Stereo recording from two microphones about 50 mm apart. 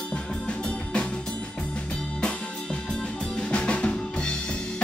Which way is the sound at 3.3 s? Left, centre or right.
Left.